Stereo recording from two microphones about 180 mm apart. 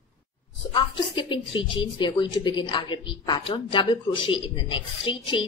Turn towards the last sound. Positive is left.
turn(degrees=25)  # may be behind; listen again after turning